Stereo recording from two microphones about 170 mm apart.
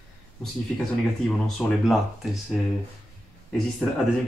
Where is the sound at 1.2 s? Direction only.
Centre (ahead or behind).